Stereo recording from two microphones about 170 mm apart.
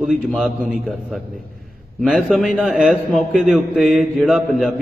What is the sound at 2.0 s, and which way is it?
A man's voice, centre (ahead or behind).